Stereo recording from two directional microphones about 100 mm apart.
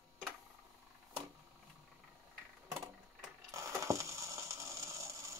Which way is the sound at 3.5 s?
30° right (ahead or behind).